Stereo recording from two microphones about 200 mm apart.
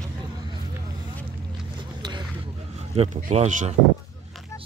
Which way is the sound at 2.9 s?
30° right (ahead or behind).